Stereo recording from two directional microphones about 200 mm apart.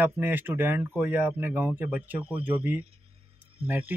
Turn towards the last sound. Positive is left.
turn(degrees=-10)  # may be behind; listen again after turning